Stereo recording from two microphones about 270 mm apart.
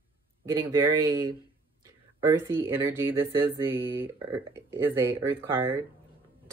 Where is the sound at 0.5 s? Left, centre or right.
Centre.